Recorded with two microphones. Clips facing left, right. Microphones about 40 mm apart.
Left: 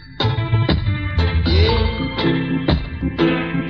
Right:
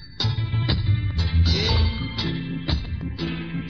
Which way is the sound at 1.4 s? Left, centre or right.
Left.